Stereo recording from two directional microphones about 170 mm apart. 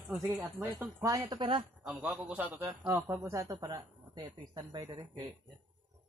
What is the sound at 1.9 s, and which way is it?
Speech, 5° right (ahead or behind).